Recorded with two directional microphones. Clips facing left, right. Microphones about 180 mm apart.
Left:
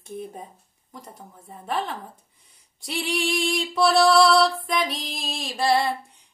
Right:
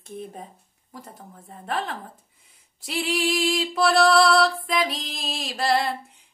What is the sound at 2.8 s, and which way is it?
Music, 5° right (ahead or behind).